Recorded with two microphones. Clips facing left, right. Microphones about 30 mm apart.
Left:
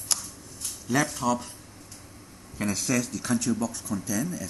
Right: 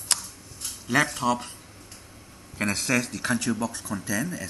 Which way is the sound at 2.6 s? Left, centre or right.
Right.